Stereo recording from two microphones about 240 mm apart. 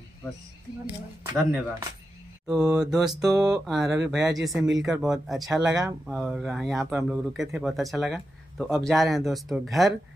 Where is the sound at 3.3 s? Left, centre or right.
Centre.